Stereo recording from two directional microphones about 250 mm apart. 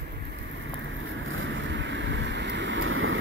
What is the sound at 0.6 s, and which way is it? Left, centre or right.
Boat, right.